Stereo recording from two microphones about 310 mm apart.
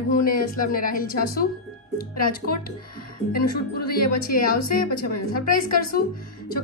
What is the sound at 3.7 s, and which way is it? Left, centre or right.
A woman's voice, left.